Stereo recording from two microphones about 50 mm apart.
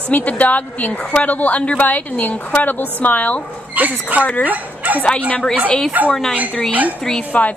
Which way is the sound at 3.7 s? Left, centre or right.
Right.